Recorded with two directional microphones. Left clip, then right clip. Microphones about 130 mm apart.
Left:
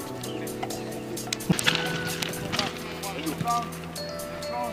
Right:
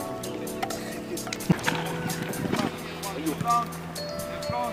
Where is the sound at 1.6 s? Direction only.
25° left (ahead or behind).